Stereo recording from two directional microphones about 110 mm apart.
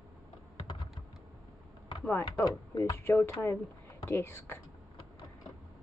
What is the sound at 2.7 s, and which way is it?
Speech, 30° left (ahead or behind).